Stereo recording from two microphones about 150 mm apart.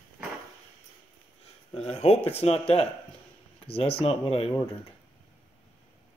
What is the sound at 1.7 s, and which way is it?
Speech, 40° left (ahead or behind).